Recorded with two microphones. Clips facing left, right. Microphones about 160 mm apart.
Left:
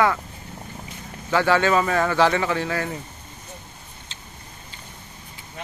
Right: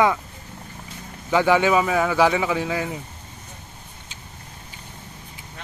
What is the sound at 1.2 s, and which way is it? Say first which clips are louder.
Speech: right 1 dB; 15° right (ahead or behind).